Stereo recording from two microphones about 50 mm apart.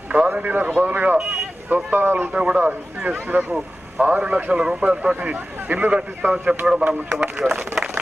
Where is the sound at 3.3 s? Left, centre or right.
Right.